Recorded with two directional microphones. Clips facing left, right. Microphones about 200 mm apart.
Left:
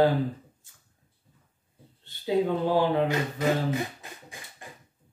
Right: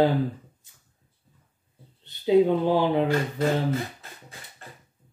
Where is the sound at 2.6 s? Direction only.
20° right (ahead or behind).